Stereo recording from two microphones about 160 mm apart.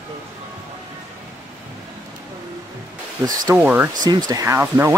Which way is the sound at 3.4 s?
15° right (ahead or behind).